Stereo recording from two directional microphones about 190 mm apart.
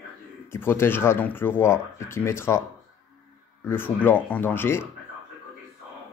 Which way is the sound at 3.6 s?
10° left (ahead or behind).